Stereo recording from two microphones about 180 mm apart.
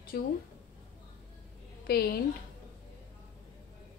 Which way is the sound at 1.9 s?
60° left (ahead or behind).